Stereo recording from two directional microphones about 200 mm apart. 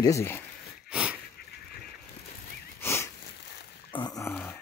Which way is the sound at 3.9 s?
20° left (ahead or behind).